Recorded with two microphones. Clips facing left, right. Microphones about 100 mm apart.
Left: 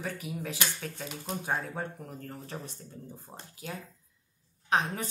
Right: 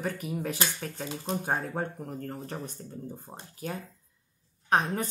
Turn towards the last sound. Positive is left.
turn(degrees=-45)  # may be behind; listen again after turning